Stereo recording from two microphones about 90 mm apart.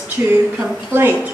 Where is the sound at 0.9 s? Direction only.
25° right (ahead or behind).